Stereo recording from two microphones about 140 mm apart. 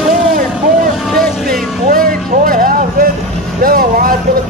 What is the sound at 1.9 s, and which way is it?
Vehicle, 90° right.